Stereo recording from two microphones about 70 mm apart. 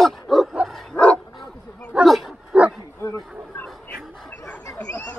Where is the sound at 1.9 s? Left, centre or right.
Centre.